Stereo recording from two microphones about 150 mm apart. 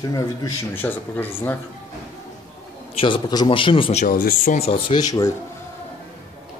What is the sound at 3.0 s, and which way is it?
Speech, 30° left (ahead or behind).